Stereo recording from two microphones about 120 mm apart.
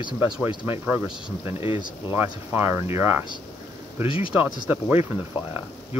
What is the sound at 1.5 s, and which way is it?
Speech, 50° left (ahead or behind).